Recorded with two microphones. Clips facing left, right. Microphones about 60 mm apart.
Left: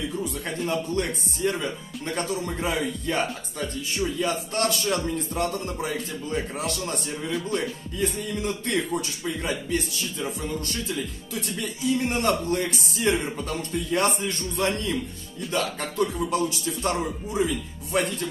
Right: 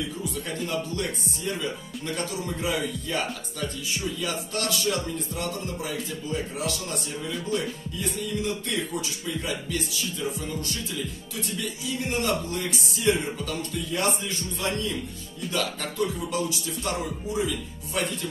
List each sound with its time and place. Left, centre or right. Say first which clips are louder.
0.7 s speech: left 5 dB; left